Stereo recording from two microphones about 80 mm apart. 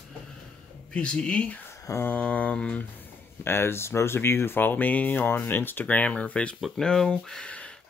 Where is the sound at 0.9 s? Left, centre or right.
Centre.